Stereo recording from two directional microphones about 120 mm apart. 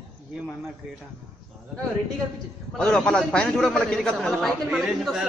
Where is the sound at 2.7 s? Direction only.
5° left (ahead or behind).